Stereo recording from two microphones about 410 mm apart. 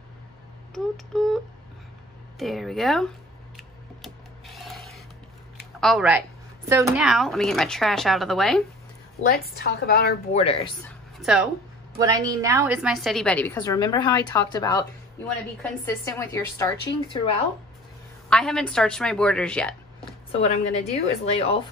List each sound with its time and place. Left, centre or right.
0.7 s a woman's voice: centre
3.5 s rub: centre
5.8 s a woman's voice: centre
9.3 s a woman's voice: left
11.1 s a woman's voice: centre
18.3 s a woman's voice: centre
20.2 s a woman's voice: centre